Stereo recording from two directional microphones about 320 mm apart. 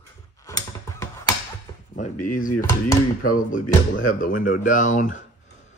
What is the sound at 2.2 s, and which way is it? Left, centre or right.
Speech, left.